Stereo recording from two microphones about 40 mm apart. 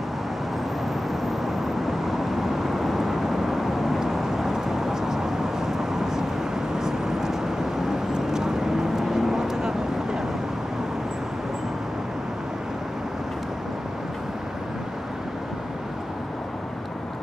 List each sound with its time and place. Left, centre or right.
1.4 s vehicle: centre